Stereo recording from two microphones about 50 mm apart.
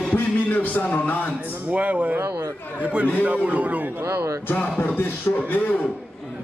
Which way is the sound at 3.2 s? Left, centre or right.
Right.